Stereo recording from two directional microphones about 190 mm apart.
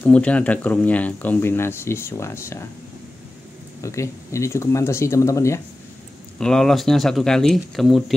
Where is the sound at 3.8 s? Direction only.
15° left (ahead or behind).